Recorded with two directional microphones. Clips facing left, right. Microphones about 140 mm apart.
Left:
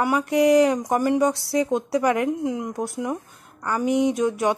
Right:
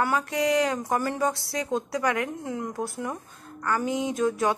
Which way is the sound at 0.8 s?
15° left (ahead or behind).